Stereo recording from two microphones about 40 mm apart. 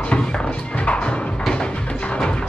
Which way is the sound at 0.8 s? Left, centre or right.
Left.